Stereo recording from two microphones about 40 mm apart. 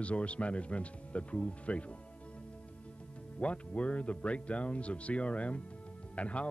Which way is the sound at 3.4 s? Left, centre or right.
Left.